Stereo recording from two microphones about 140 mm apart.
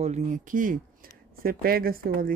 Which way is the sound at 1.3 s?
90° right.